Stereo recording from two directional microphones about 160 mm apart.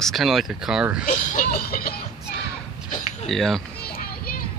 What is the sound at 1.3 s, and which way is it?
Music, 65° left (ahead or behind).